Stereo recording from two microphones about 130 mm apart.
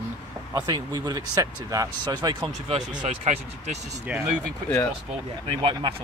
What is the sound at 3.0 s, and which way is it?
Speech, 70° right (ahead or behind).